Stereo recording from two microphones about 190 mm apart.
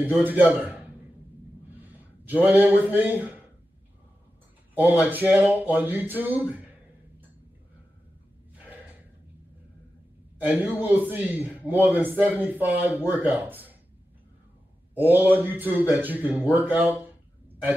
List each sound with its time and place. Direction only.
0.0 s speech: 10° right (ahead or behind)
2.2 s speech: 10° right (ahead or behind)
5.0 s speech: 10° right (ahead or behind)
10.4 s speech: 10° right (ahead or behind)
15.0 s speech: 10° right (ahead or behind)